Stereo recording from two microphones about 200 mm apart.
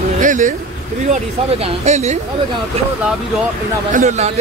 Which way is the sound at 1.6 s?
35° right (ahead or behind).